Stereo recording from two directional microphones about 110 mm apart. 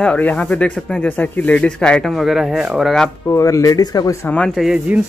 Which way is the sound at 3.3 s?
30° left (ahead or behind).